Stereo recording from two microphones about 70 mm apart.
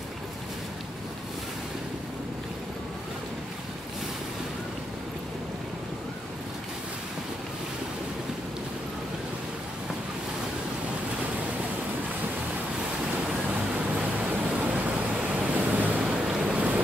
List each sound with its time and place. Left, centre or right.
13.7 s vehicle: right
16.3 s waves: centre
16.5 s boat: right